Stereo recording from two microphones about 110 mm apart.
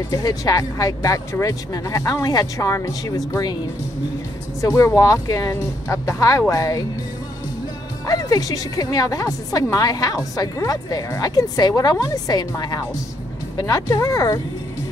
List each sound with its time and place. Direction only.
0.1 s a woman's voice: 30° left (ahead or behind)
4.6 s speech: 30° left (ahead or behind)
8.1 s a woman's voice: 35° left (ahead or behind)